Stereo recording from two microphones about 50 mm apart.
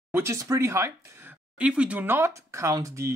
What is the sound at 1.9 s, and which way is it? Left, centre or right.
Speech, right.